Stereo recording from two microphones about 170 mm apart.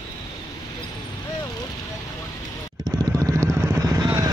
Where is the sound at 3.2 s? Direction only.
15° right (ahead or behind).